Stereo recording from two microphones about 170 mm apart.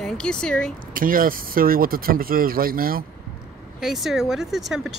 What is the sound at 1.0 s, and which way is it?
Speech, 55° right (ahead or behind).